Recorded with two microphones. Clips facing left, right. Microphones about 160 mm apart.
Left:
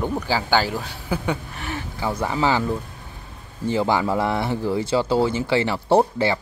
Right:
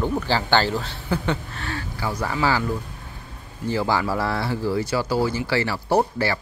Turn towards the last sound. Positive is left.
turn(degrees=20)  # may be behind; listen again after turning